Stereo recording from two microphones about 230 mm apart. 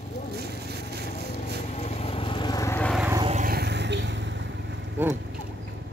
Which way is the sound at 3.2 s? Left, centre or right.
Right.